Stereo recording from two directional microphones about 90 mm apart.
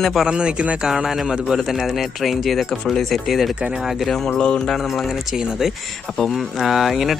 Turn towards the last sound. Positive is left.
turn(degrees=0)  # may be behind; listen again after turning